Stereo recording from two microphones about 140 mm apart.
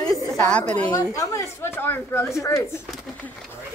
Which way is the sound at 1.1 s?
20° left (ahead or behind).